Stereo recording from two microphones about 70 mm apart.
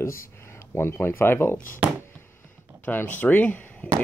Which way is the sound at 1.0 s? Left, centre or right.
Left.